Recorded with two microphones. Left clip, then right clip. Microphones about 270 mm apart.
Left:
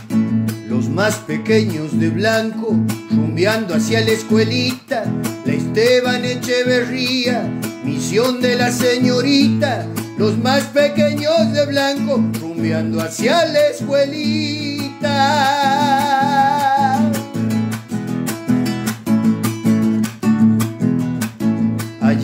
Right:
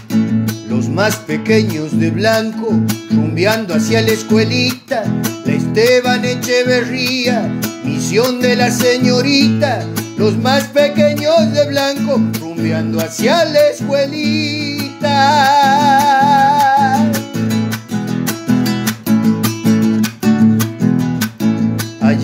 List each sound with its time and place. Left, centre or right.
0.7 s music: right
13.2 s music: centre
16.9 s music: right
22.0 s music: right